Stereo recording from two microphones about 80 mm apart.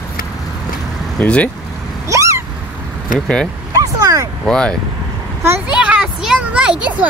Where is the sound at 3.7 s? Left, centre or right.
Right.